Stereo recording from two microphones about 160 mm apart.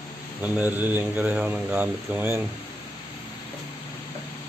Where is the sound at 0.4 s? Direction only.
10° right (ahead or behind).